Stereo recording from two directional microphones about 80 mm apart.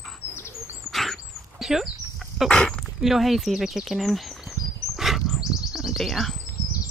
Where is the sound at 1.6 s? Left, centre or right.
Centre.